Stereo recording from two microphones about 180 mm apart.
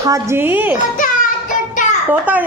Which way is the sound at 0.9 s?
50° left (ahead or behind).